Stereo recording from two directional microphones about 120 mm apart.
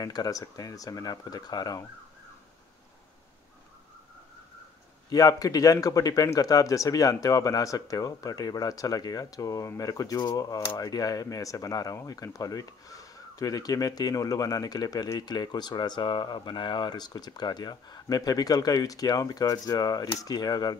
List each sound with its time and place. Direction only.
0.0 s speech: 30° left (ahead or behind)
5.1 s speech: 30° left (ahead or behind)